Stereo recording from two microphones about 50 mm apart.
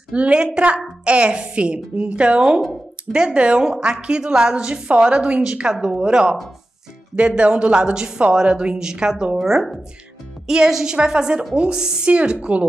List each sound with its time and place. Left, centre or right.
0.1 s a woman's voice: right
12.1 s speech: right